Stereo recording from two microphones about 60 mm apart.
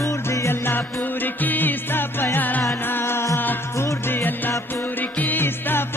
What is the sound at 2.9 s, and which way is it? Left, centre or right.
Music, left.